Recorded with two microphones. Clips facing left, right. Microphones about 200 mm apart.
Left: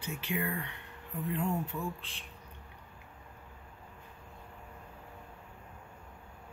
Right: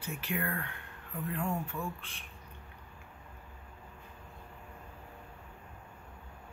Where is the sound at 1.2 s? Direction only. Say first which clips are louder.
Left 2 dB; 20° left (ahead or behind).